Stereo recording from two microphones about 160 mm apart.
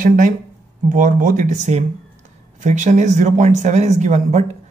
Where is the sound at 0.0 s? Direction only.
55° right (ahead or behind).